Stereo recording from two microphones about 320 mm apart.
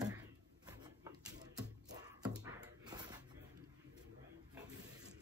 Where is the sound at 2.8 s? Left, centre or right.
Centre.